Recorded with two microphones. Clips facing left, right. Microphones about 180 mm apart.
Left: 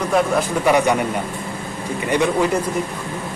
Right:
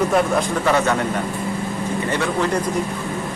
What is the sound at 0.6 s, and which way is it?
Speech, 15° left (ahead or behind).